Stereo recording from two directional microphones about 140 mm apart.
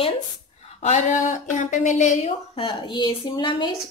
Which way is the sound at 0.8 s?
60° left (ahead or behind).